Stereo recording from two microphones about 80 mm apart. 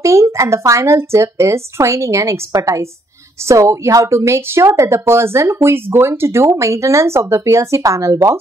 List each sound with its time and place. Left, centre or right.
0.0 s speech: right